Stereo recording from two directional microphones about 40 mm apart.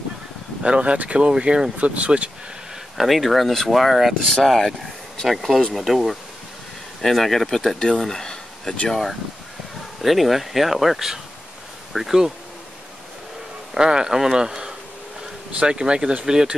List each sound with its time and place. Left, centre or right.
0.6 s speech: right
3.0 s speech: centre
4.3 s speech: centre
8.0 s a sound: centre
8.8 s speech: centre
13.7 s speech: centre